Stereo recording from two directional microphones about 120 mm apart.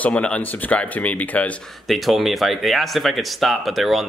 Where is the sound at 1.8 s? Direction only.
Centre (ahead or behind).